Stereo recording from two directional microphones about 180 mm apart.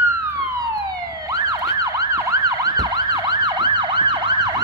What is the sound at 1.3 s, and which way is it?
Emergency vehicle, 20° right (ahead or behind).